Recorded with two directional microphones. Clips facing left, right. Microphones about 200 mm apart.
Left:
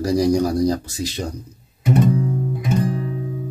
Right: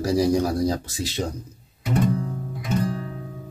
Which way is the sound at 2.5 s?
20° left (ahead or behind).